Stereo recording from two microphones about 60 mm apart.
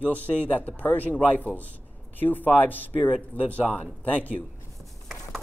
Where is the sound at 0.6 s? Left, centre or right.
Left.